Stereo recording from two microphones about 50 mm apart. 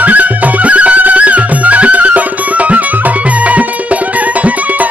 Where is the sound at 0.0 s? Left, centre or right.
Right.